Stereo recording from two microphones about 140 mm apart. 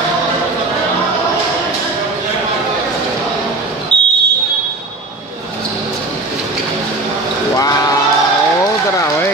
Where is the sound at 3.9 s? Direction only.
10° left (ahead or behind).